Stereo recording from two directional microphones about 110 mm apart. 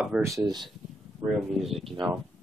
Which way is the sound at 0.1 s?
10° right (ahead or behind).